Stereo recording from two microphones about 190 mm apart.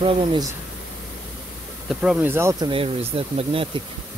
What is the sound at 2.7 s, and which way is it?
Speech, 30° right (ahead or behind).